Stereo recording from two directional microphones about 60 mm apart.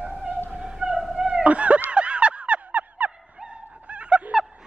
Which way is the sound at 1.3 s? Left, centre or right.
Right.